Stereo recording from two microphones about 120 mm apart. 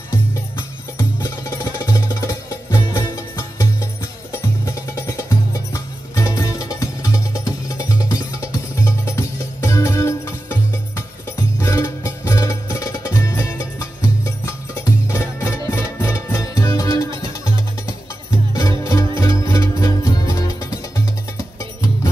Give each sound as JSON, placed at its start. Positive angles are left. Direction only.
{"t": 1.2, "sound": "music", "side_deg": 30}
{"t": 18.5, "sound": "music", "side_deg": 30}